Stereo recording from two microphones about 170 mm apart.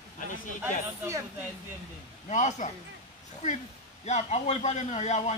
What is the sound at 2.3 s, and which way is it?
A man's voice, 45° left (ahead or behind).